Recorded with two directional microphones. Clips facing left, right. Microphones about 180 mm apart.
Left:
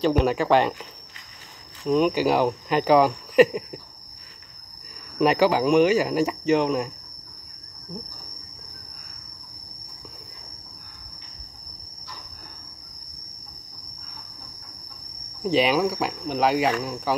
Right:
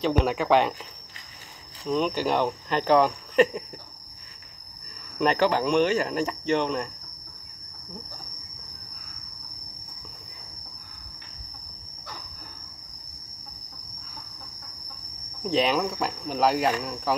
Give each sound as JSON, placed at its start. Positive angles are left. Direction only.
{"t": 0.0, "sound": "speech", "side_deg": 0}
{"t": 1.9, "sound": "speech", "side_deg": 5}
{"t": 4.8, "sound": "speech", "side_deg": 5}
{"t": 15.4, "sound": "speech", "side_deg": 0}